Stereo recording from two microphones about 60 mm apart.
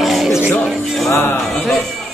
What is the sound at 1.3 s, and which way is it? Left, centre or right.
Music, centre.